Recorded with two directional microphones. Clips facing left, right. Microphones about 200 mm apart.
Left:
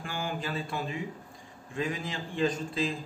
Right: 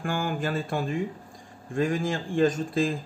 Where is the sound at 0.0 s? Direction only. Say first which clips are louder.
Right 6 dB; 50° right (ahead or behind).